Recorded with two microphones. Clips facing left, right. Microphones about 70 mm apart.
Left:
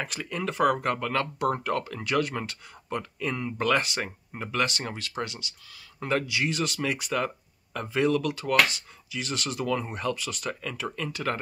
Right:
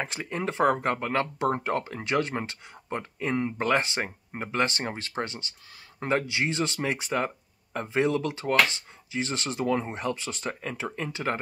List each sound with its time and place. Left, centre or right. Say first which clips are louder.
0.0 s speech: right 1 dB; right